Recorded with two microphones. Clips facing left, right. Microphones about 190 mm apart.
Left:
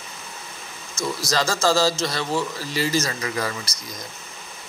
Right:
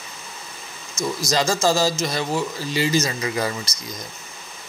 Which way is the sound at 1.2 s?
20° right (ahead or behind).